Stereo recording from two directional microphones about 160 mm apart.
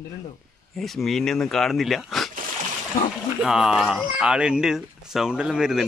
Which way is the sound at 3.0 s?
55° left (ahead or behind).